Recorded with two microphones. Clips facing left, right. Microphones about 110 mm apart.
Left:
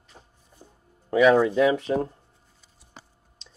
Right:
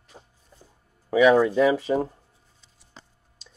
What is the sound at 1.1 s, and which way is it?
A man's voice, centre (ahead or behind).